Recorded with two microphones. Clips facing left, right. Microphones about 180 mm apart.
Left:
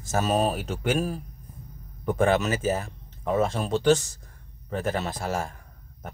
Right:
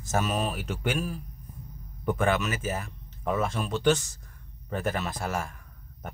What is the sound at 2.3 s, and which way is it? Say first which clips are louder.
Speech: left 4 dB; 35° left (ahead or behind).